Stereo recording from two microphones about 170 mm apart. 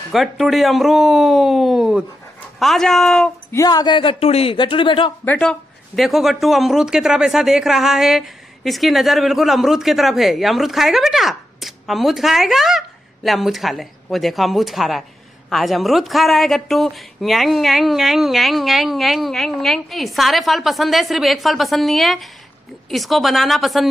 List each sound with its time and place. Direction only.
0.1 s speech: centre (ahead or behind)
3.5 s speech: 25° left (ahead or behind)
5.2 s speech: 5° left (ahead or behind)